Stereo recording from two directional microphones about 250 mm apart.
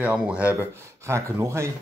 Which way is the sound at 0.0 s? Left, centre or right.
Centre.